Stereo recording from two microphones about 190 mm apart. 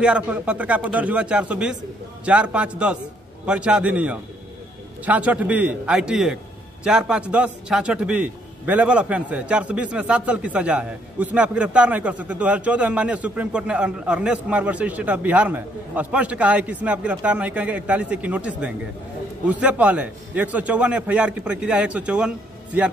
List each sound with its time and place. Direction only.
0.0 s a man's voice: 5° right (ahead or behind)